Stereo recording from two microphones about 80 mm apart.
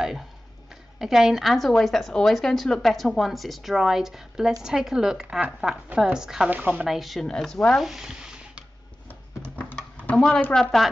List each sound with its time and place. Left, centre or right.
0.9 s a woman's voice: centre
6.5 s speech: centre
6.9 s a woman's voice: centre
7.8 s a woman's voice: centre
10.1 s a woman's voice: centre